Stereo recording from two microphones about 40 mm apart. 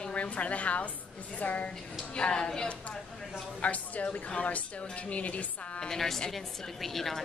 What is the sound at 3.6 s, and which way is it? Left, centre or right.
A woman's voice, left.